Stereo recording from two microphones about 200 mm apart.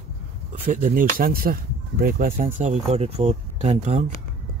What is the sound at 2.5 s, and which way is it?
Speech, 35° right (ahead or behind).